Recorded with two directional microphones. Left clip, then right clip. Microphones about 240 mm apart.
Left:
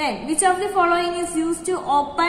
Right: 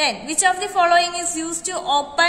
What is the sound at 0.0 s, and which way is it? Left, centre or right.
A woman's voice, right.